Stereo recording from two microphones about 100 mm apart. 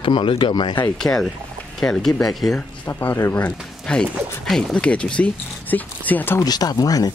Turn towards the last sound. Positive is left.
turn(degrees=40)  # may be behind; listen again after turning